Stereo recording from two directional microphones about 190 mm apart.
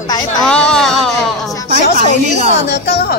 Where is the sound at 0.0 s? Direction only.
20° left (ahead or behind).